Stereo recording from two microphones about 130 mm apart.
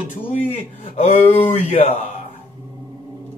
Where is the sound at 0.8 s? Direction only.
65° left (ahead or behind).